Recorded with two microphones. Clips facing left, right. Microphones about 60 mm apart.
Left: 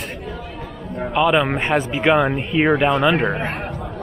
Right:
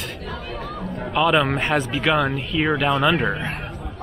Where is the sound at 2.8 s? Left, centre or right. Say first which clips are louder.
Left 3 dB; centre.